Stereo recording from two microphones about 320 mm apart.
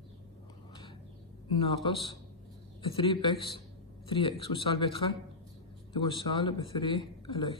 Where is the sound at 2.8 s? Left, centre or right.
Centre.